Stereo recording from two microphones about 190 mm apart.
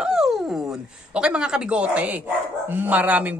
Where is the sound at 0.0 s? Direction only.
Centre (ahead or behind).